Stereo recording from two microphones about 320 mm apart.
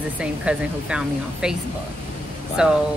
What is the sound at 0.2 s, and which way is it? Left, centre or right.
Speech, centre.